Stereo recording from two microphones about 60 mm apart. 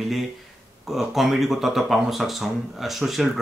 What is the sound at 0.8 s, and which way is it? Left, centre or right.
Speech, centre.